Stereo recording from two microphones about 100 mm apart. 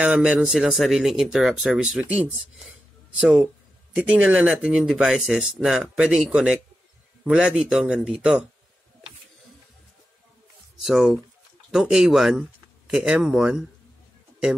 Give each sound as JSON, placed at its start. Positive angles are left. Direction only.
{"t": 0.0, "sound": "speech", "side_deg": -10}
{"t": 10.8, "sound": "speech", "side_deg": 0}